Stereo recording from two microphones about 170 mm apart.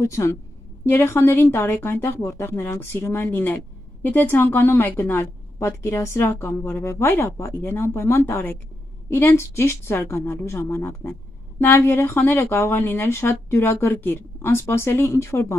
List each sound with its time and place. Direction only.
0.0 s speech: 15° left (ahead or behind)